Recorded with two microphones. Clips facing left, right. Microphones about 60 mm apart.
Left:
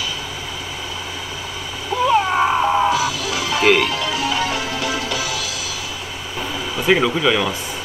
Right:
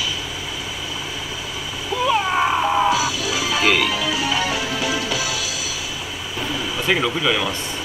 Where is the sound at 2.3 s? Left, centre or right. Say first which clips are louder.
Left 2 dB; centre.